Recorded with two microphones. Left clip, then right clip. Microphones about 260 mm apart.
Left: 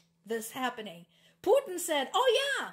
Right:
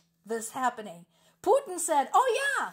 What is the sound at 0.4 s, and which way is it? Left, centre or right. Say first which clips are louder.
Speech: right 7 dB; right.